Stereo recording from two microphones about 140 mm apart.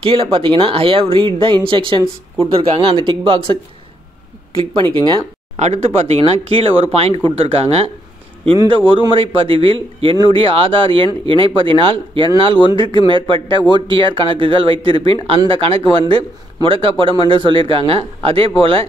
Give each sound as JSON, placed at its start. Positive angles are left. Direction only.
{"t": 0.0, "sound": "speech", "side_deg": -40}
{"t": 4.9, "sound": "speech", "side_deg": -35}
{"t": 5.6, "sound": "speech", "side_deg": -50}